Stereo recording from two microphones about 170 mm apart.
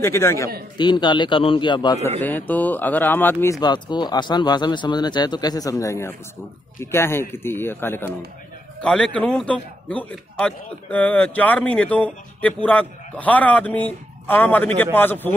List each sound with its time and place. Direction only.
0.0 s a man's voice: 15° left (ahead or behind)
0.7 s speech: 25° left (ahead or behind)
2.0 s a man's voice: 10° left (ahead or behind)
3.6 s a man's voice: 25° left (ahead or behind)